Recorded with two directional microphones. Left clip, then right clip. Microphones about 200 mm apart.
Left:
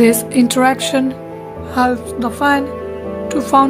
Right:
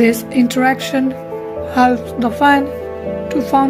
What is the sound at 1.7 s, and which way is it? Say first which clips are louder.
Speech: right 2 dB; 10° right (ahead or behind).